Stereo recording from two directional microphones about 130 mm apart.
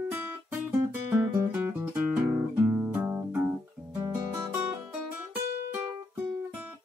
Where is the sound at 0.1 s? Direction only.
15° right (ahead or behind).